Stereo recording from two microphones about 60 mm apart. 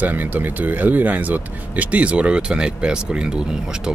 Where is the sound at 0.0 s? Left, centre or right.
Right.